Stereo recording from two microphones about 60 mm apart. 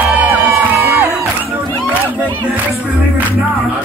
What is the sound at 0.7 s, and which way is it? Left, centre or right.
Music, right.